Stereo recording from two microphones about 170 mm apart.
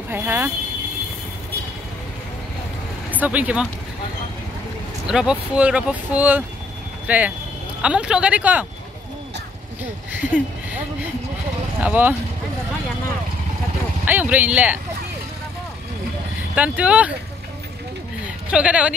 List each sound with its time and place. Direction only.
0.1 s speech: 15° right (ahead or behind)
3.1 s speech: 10° right (ahead or behind)
5.0 s speech: 5° right (ahead or behind)
10.2 s speech: 10° right (ahead or behind)
11.8 s speech: 10° right (ahead or behind)
14.0 s speech: 10° right (ahead or behind)
16.5 s speech: 10° right (ahead or behind)
18.5 s speech: 5° right (ahead or behind)